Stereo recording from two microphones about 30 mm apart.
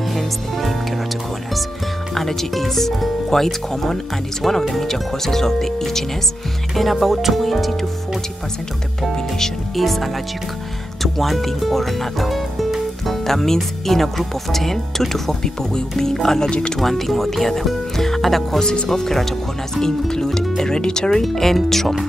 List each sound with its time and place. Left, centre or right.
0.1 s speech: centre
2.1 s speech: centre
6.7 s speech: centre
9.8 s speech: centre
16.4 s speech: left
16.8 s speech: centre; by 21.1 s left
21.1 s speech: centre